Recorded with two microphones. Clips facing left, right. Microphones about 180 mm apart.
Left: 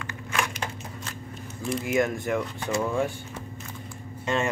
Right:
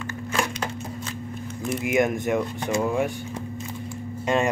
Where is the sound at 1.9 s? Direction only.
20° right (ahead or behind).